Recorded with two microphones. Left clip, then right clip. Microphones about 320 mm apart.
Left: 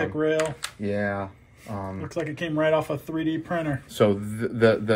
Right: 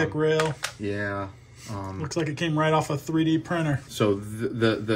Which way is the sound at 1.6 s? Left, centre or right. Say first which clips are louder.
Left 1 dB; centre.